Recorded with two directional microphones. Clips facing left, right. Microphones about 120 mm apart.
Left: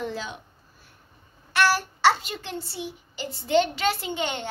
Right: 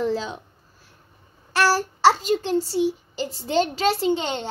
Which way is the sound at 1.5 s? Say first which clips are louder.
Right 2 dB; 35° right (ahead or behind).